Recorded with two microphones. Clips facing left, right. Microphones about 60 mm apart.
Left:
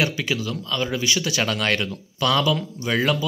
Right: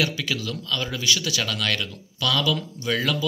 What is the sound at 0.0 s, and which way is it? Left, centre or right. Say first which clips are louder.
Speech: left 2 dB; centre.